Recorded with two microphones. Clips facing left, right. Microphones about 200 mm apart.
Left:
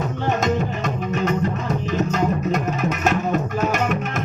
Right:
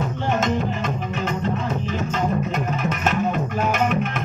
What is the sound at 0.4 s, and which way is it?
Music, 40° left (ahead or behind).